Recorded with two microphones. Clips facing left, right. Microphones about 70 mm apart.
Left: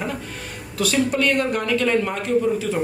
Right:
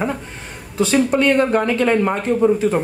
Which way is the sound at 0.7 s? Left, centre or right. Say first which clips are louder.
Right 5 dB; right.